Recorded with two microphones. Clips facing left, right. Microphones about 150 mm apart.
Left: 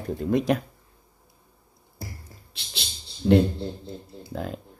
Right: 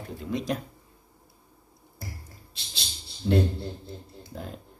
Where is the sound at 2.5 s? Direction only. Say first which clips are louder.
Left 3 dB; 65° left (ahead or behind).